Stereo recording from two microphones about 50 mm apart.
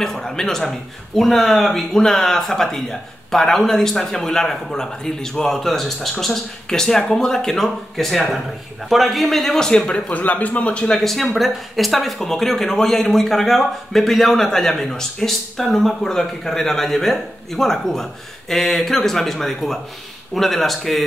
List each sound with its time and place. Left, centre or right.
0.0 s speech: centre
9.7 s speech: centre
10.9 s speech: centre